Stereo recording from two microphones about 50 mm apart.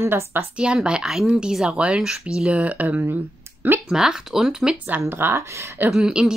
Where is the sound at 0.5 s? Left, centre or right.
Centre; by 3.0 s right.